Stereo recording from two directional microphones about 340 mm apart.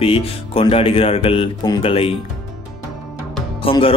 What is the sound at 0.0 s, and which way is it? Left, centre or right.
Speech, centre.